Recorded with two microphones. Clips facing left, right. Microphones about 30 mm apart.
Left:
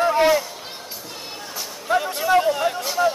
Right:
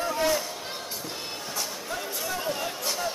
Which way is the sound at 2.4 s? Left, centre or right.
Left.